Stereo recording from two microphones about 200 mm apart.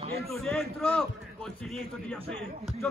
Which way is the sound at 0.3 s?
Centre (ahead or behind).